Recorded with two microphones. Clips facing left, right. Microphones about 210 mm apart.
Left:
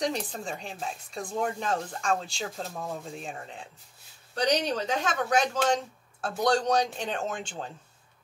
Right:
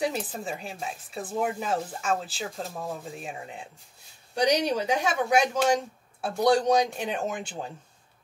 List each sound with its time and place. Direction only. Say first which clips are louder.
0.0 s speech: right 1 dB; 5° right (ahead or behind)